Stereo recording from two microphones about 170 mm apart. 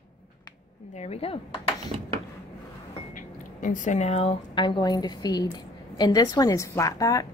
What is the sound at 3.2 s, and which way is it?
A woman's voice, 50° left (ahead or behind).